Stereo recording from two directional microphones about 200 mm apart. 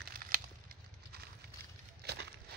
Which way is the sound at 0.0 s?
45° right (ahead or behind).